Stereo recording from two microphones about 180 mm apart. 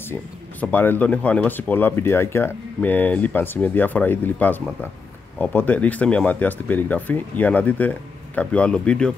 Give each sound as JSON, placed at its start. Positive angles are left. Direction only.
{"t": 0.1, "sound": "speech", "side_deg": 10}